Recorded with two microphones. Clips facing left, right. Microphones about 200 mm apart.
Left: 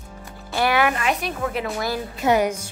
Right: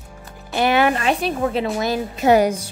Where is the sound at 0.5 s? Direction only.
25° right (ahead or behind).